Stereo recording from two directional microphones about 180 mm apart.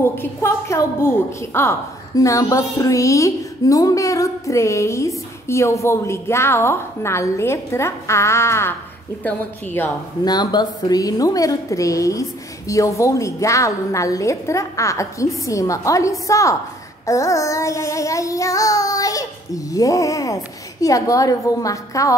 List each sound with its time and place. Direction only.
0.0 s a woman's voice: 15° left (ahead or behind)
10.2 s a woman's voice: 25° left (ahead or behind)